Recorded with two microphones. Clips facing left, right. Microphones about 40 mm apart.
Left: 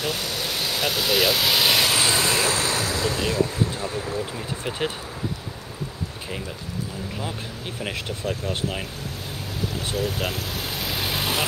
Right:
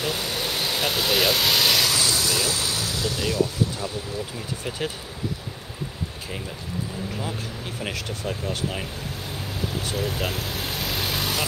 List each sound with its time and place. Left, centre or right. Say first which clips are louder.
0.0 s vehicle: even; centre
1.9 s speech: left 3 dB; left
4.6 s speech: left 2 dB; left
8.3 s speech: left 1 dB; centre
9.9 s vehicle: left 2 dB; centre